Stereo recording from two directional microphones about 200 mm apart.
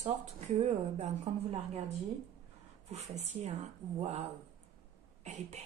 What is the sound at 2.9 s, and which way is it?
Speech, 35° right (ahead or behind).